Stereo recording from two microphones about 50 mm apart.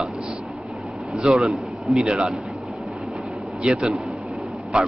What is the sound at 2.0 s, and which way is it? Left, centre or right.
Speech, centre.